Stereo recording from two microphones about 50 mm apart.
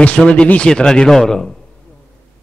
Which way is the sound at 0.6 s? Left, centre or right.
Centre.